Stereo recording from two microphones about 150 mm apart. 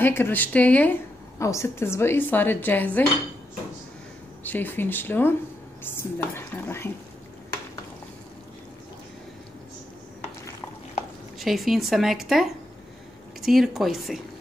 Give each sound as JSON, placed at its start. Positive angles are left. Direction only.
{"t": 0.0, "sound": "a woman's voice", "side_deg": 15}
{"t": 4.4, "sound": "a woman's voice", "side_deg": 10}
{"t": 11.3, "sound": "speech", "side_deg": 0}